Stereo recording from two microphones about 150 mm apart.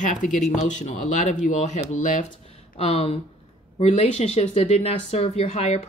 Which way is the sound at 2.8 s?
40° left (ahead or behind).